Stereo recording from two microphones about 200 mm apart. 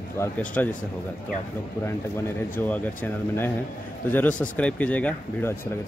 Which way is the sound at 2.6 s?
10° left (ahead or behind).